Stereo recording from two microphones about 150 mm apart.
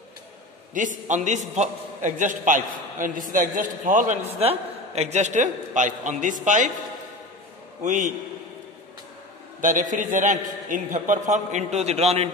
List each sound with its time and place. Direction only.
0.7 s a man's voice: 55° right (ahead or behind)
4.4 s a man's voice: 45° right (ahead or behind)
7.8 s a man's voice: 55° right (ahead or behind)
9.6 s a man's voice: 60° right (ahead or behind)